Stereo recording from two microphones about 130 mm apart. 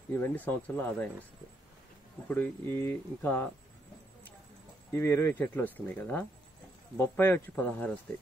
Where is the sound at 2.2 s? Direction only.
15° left (ahead or behind).